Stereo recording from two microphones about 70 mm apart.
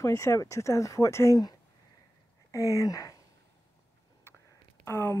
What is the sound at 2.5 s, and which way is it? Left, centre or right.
Speech, left.